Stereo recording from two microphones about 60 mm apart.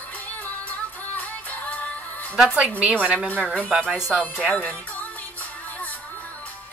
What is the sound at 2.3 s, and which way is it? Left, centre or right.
A woman's voice, centre.